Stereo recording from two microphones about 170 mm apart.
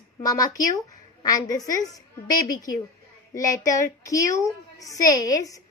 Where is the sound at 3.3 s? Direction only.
20° left (ahead or behind).